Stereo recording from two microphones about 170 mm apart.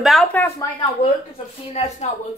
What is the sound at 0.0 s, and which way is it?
Speech, centre (ahead or behind).